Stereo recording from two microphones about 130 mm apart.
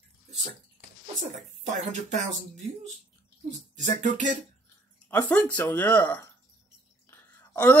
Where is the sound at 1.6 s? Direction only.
65° right (ahead or behind).